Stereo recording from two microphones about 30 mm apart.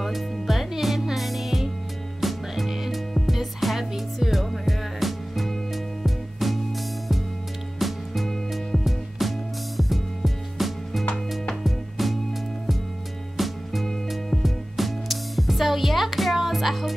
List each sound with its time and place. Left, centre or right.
0.0 s music: centre
13.4 s music: centre